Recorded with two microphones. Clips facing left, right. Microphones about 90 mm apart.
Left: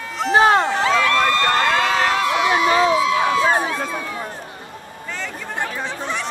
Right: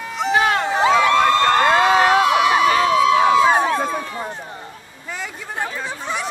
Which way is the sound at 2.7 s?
20° left (ahead or behind).